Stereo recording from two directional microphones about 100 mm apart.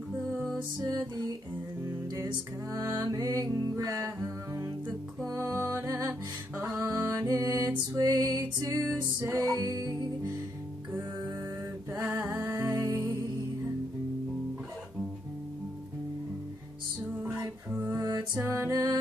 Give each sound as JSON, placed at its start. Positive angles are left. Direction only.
{"t": 0.3, "sound": "music", "side_deg": -5}
{"t": 2.7, "sound": "music", "side_deg": -35}
{"t": 5.2, "sound": "music", "side_deg": -30}
{"t": 8.5, "sound": "music", "side_deg": -30}
{"t": 12.0, "sound": "music", "side_deg": -20}
{"t": 17.9, "sound": "music", "side_deg": -35}
{"t": 18.3, "sound": "music", "side_deg": -20}
{"t": 18.7, "sound": "music", "side_deg": -40}